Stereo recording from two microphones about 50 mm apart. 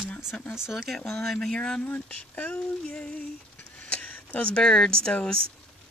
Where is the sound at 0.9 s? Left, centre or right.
Centre.